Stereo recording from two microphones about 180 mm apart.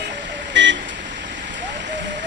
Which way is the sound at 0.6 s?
90° right.